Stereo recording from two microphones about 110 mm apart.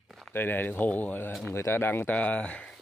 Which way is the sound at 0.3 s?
20° left (ahead or behind).